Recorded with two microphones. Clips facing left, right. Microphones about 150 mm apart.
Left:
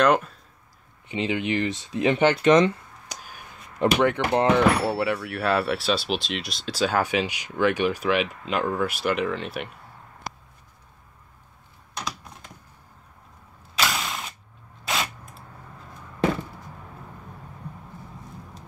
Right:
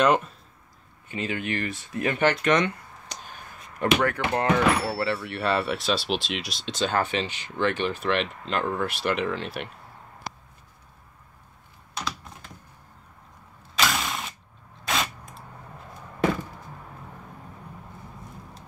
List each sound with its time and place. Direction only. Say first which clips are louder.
0.0 s speech: left 1 dB; centre (ahead or behind)
1.0 s speech: left 4 dB; 20° left (ahead or behind)
3.1 s a sound: even; 10° left (ahead or behind)
4.0 s speech: left 4 dB; 25° left (ahead or behind)
5.2 s speech: left 2 dB; 5° left (ahead or behind)
13.7 s mechanisms: right 1 dB; centre (ahead or behind)
14.9 s a sound: even; centre (ahead or behind)